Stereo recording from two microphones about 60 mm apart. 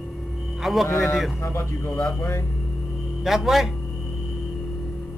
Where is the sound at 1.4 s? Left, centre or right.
Left.